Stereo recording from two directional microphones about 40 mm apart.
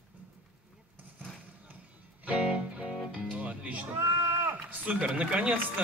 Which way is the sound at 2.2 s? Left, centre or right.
Right.